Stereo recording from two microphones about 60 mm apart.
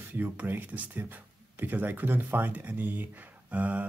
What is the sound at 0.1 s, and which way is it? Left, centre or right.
Speech, right.